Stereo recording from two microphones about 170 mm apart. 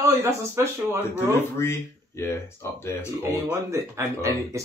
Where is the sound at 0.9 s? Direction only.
15° left (ahead or behind).